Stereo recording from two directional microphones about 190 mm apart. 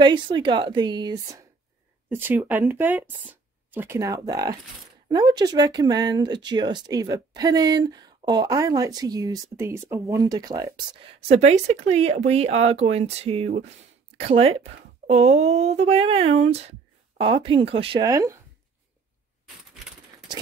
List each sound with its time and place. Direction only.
0.0 s speech: 25° right (ahead or behind)
2.0 s speech: 10° right (ahead or behind)